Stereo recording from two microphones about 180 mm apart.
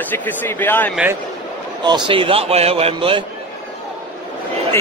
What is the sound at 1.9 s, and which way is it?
A man's voice, 25° right (ahead or behind).